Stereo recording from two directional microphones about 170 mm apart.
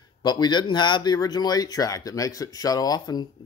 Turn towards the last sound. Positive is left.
turn(degrees=25)  # may be behind; listen again after turning